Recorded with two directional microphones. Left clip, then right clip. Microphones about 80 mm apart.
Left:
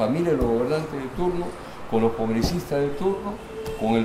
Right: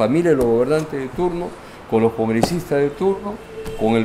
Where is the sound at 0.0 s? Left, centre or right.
Right.